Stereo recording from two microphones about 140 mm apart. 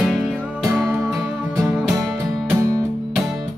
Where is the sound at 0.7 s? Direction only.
25° right (ahead or behind).